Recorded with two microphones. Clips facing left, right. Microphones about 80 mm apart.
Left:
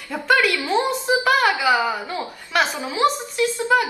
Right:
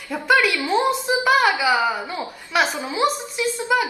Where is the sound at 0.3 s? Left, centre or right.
Centre.